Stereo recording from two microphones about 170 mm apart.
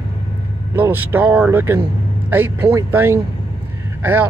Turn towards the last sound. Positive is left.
turn(degrees=-10)  # may be behind; listen again after turning